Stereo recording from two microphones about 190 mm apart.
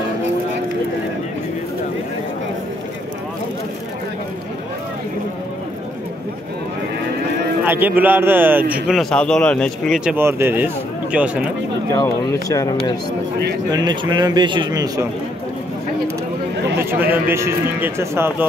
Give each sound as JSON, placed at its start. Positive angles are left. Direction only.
{"t": 7.6, "sound": "a man's voice", "side_deg": -10}
{"t": 8.8, "sound": "speech", "side_deg": 0}
{"t": 11.9, "sound": "speech", "side_deg": 15}
{"t": 13.7, "sound": "a man's voice", "side_deg": -20}
{"t": 16.7, "sound": "a man's voice", "side_deg": -10}